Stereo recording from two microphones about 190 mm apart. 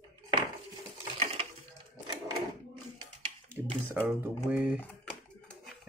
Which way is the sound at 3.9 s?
10° right (ahead or behind).